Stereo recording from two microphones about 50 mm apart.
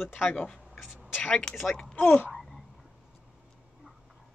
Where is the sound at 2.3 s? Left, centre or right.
Centre.